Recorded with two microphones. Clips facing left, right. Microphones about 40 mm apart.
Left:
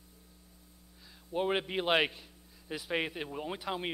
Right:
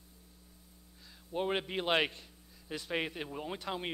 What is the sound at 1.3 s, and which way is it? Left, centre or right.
A man's voice, centre.